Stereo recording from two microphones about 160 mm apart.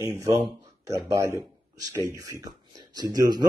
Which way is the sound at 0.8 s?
20° right (ahead or behind).